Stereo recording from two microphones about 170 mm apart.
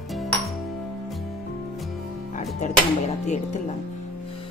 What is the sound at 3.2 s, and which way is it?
Music, 45° left (ahead or behind).